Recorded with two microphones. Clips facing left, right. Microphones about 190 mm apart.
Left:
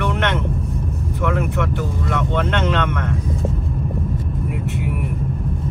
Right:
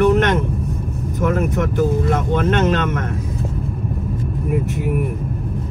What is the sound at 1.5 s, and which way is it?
Speech, 40° right (ahead or behind).